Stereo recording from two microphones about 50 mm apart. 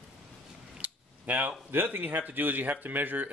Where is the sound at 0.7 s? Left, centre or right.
Right.